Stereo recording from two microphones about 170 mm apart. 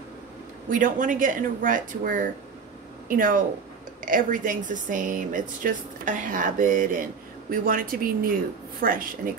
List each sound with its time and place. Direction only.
0.7 s a woman's voice: 50° right (ahead or behind)